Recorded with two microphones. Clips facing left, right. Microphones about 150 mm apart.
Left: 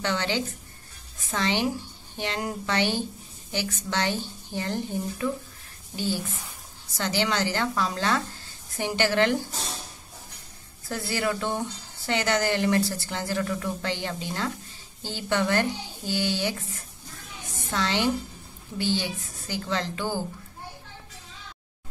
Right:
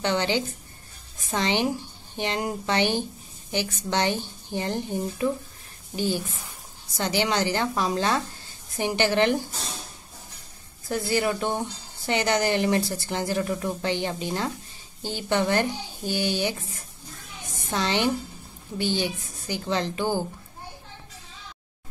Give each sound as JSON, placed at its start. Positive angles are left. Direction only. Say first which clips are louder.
{"t": 0.0, "sound": "a woman's voice", "louder": "right 3 dB", "side_deg": -20}
{"t": 10.9, "sound": "a woman's voice", "louder": "right 3 dB", "side_deg": -20}
{"t": 17.6, "sound": "a woman's voice", "louder": "right 1 dB", "side_deg": -20}